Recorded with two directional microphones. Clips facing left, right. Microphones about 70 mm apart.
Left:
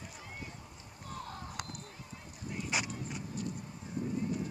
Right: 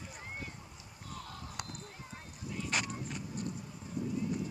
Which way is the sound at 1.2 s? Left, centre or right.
Left.